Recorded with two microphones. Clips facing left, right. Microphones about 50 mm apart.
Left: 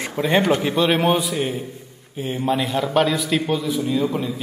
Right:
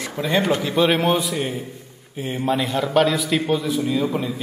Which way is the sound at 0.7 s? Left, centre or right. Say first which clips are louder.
Even; centre.